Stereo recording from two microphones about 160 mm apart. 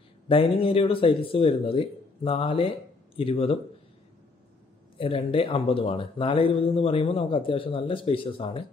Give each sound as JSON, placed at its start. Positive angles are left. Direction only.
{"t": 0.3, "sound": "speech", "side_deg": 35}
{"t": 4.9, "sound": "speech", "side_deg": 35}